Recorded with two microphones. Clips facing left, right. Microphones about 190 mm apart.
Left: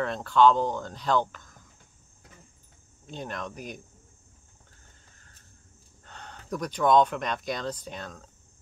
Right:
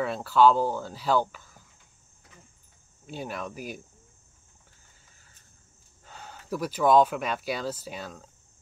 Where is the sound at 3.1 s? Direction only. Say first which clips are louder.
Right 1 dB; 5° right (ahead or behind).